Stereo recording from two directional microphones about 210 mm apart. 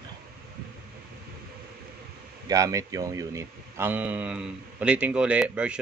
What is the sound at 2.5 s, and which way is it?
Speech, 15° right (ahead or behind).